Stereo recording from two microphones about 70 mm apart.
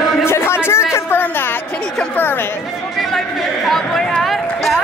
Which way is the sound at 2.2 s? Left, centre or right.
Left.